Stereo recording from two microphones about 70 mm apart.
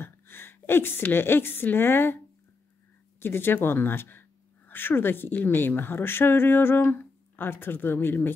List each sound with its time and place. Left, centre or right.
0.0 s a woman's voice: left
3.2 s speech: left